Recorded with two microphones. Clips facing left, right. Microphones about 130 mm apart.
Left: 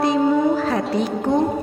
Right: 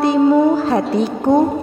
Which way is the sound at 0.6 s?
30° right (ahead or behind).